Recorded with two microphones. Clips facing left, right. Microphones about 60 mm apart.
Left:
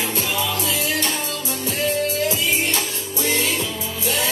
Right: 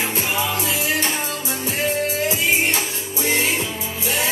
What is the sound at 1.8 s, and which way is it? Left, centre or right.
Music, right.